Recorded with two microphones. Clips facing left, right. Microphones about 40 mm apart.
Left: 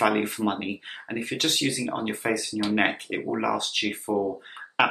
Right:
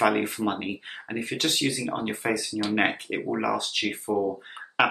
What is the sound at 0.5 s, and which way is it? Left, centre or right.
Speech, centre.